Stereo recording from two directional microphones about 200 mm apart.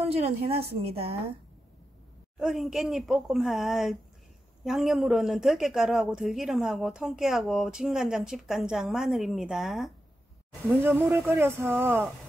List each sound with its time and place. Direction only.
0.0 s a woman's voice: 30° right (ahead or behind)
2.3 s speech: centre (ahead or behind)